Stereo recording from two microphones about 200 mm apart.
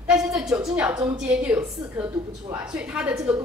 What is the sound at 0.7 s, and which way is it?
A woman's voice, 5° right (ahead or behind).